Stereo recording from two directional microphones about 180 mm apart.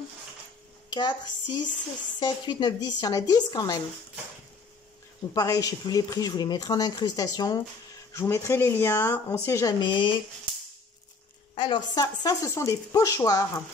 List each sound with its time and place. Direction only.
0.8 s speech: 25° left (ahead or behind)
5.3 s speech: 20° left (ahead or behind)
11.5 s speech: 25° left (ahead or behind)